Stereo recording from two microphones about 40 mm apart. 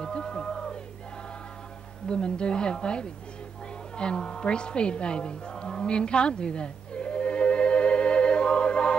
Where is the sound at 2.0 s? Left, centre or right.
Left.